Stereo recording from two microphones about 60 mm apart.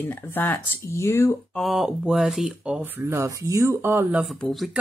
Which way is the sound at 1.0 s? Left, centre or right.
Left.